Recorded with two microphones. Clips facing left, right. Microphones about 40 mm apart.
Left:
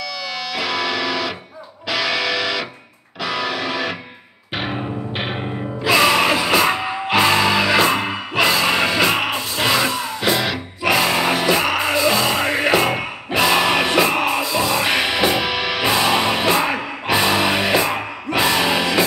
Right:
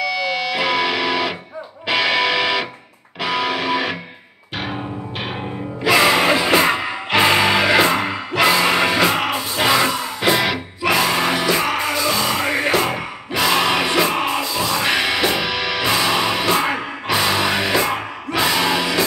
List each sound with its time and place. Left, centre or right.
0.0 s music: centre
5.9 s music: centre
6.7 s music: centre
7.2 s music: centre
9.1 s music: centre
9.6 s music: centre
10.9 s music: centre